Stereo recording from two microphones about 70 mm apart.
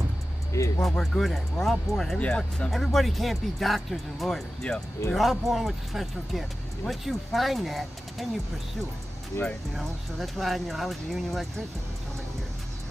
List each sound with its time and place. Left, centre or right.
0.5 s music: left
0.8 s speech: centre
2.1 s speech: centre
2.7 s speech: centre
9.8 s speech: centre